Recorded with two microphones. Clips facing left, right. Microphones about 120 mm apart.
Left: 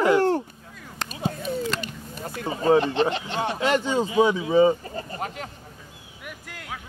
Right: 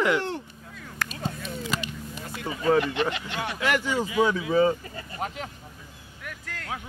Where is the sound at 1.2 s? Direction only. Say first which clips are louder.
Left 10 dB; 45° left (ahead or behind).